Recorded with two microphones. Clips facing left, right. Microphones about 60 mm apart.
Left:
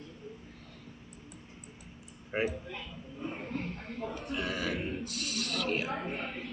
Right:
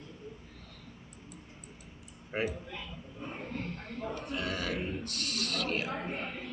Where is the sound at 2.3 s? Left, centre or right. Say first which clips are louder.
Left 2 dB; centre.